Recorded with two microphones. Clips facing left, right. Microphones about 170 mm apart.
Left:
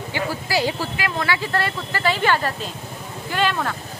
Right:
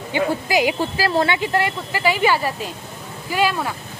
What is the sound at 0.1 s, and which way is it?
Speech, 20° right (ahead or behind).